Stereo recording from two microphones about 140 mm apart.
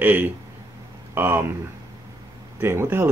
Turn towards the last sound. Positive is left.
turn(degrees=-15)  # may be behind; listen again after turning